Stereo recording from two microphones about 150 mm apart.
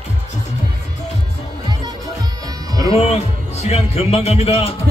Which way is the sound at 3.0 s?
45° left (ahead or behind).